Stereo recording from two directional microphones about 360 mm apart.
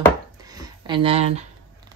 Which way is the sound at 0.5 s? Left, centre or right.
Centre.